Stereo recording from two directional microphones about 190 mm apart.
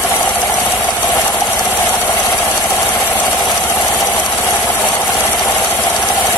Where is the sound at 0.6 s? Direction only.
5° left (ahead or behind).